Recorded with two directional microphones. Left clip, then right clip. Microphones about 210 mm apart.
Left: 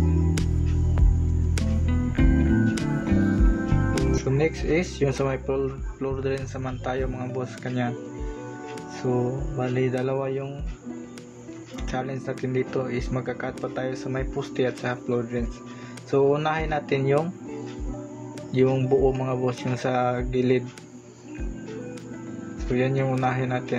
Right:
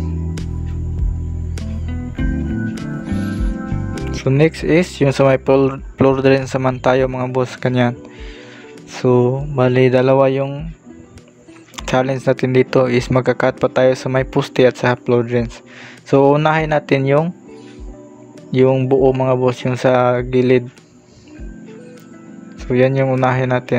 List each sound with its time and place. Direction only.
1.5 s music: centre (ahead or behind)
4.1 s speech: 50° right (ahead or behind)
8.9 s speech: 50° right (ahead or behind)
11.7 s speech: 55° right (ahead or behind)
18.5 s speech: 45° right (ahead or behind)
22.7 s speech: 50° right (ahead or behind)